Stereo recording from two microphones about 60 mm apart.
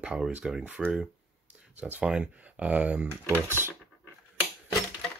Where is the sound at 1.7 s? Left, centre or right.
Right.